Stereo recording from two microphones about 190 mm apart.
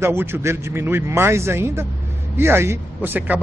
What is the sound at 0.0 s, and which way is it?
A man's voice, 10° right (ahead or behind).